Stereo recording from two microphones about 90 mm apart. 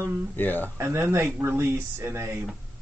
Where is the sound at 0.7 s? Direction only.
30° right (ahead or behind).